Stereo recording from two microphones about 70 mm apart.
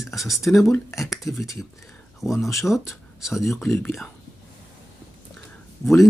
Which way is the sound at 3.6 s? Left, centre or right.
Left.